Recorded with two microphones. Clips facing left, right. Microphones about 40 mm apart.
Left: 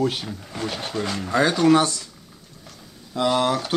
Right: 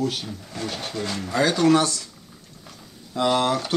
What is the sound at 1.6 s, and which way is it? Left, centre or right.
Speech, centre.